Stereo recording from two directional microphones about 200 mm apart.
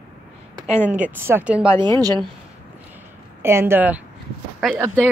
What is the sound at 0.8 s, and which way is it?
Speech, 5° right (ahead or behind).